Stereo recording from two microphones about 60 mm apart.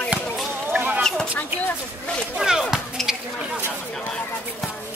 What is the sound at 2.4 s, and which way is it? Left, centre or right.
Speech, centre.